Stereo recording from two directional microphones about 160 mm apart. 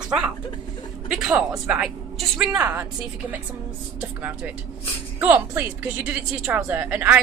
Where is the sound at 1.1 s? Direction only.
5° right (ahead or behind).